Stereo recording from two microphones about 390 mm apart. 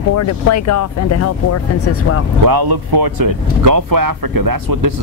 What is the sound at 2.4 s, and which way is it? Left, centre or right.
Speech, right.